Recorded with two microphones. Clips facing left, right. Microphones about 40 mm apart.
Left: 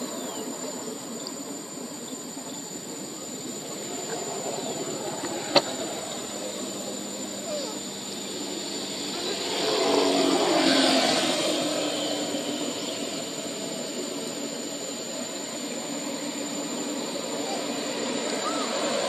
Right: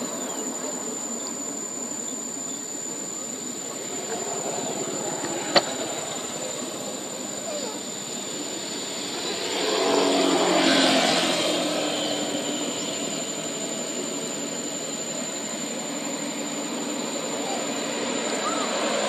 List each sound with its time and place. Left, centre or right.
9.2 s a sound: centre
10.0 s vehicle: right
17.5 s vehicle: right